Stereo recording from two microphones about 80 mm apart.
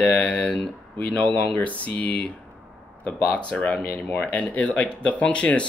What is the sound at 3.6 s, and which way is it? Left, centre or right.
Speech, centre.